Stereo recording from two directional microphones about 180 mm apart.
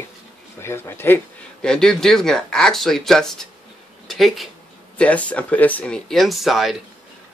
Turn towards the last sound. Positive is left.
turn(degrees=0)  # may be behind; listen again after turning